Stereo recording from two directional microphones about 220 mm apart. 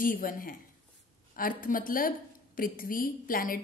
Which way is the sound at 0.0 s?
40° left (ahead or behind).